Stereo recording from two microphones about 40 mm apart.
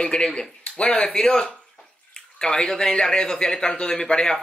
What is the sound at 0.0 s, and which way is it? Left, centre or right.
Speech, left.